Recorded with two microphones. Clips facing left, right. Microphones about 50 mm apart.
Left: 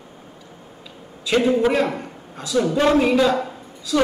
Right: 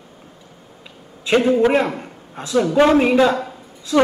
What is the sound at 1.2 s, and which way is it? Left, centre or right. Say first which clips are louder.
A man's voice: right 3 dB; right.